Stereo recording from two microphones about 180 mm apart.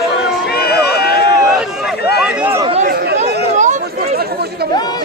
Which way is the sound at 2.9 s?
60° right (ahead or behind).